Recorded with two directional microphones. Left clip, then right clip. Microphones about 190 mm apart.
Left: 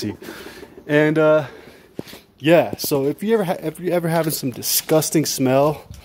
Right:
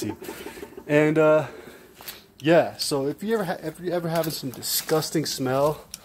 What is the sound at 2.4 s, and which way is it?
A man's voice, 35° left (ahead or behind).